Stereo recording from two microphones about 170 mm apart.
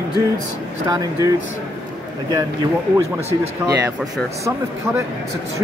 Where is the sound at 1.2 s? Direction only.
20° right (ahead or behind).